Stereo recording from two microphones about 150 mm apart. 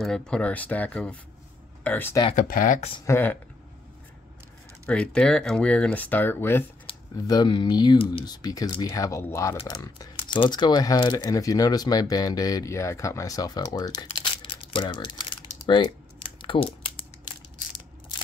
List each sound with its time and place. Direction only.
0.0 s speech: 5° left (ahead or behind)
2.3 s speech: 70° left (ahead or behind)
3.1 s speech: 15° left (ahead or behind)
4.8 s speech: 5° left (ahead or behind)
7.2 s speech: 25° left (ahead or behind)